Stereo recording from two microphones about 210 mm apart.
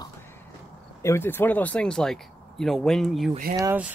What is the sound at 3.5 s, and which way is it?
Speech, 10° right (ahead or behind).